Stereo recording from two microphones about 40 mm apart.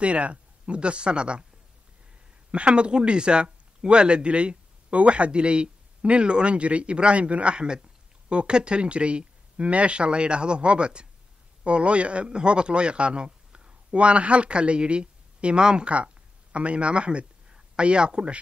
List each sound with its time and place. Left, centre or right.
0.0 s speech: right
2.5 s a man's voice: right